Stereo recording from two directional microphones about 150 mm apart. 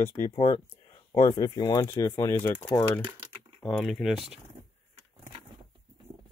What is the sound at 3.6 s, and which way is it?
Speech, centre (ahead or behind).